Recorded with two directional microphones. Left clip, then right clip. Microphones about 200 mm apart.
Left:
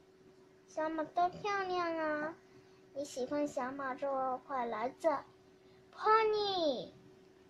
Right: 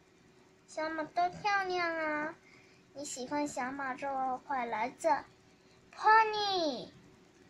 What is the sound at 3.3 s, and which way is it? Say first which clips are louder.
A woman's voice: right 4 dB; 20° left (ahead or behind).